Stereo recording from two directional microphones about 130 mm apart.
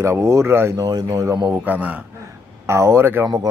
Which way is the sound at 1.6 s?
10° right (ahead or behind).